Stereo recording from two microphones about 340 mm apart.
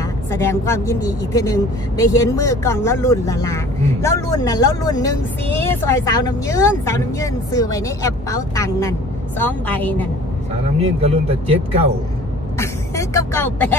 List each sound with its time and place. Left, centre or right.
0.3 s a woman's voice: centre
10.8 s speech: centre
12.5 s speech: centre